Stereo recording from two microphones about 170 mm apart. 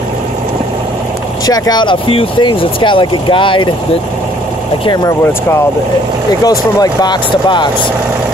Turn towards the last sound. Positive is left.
turn(degrees=25)  # may be behind; listen again after turning